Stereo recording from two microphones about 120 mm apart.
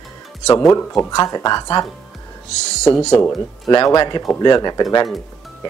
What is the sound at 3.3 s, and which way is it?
Speech, 40° left (ahead or behind).